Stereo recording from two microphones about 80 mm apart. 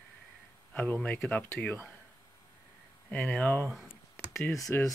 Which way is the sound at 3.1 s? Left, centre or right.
Centre.